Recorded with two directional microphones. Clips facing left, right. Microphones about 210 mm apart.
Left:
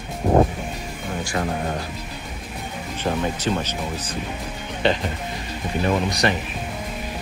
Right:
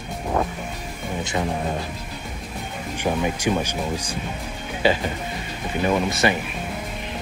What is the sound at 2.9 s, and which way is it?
Speech, 15° right (ahead or behind).